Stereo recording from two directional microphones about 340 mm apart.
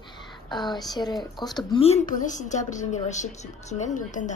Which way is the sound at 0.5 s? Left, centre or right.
Centre.